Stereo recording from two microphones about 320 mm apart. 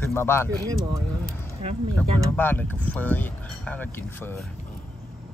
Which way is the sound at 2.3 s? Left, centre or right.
Centre.